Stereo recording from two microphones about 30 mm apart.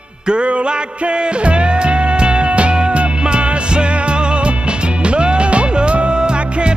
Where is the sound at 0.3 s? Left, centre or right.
Right.